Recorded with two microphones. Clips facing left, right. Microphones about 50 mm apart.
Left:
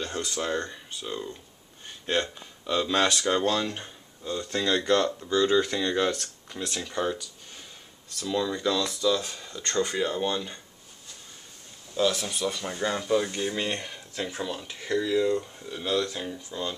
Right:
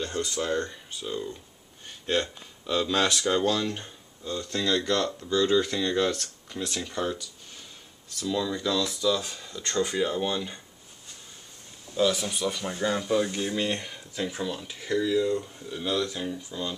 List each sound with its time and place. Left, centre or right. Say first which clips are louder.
0.4 s speech: even; centre
2.6 s speech: left 1 dB; centre
4.5 s speech: left 2 dB; left
8.3 s speech: left 1 dB; centre
11.9 s speech: right 1 dB; centre
15.1 s speech: left 3 dB; centre
15.4 s speech: right 1 dB; centre